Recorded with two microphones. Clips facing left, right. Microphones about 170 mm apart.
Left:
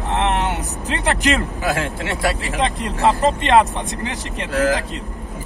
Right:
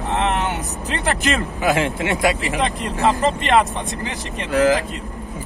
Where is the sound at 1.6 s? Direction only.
15° right (ahead or behind).